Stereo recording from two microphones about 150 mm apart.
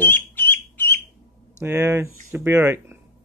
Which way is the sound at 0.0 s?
15° left (ahead or behind).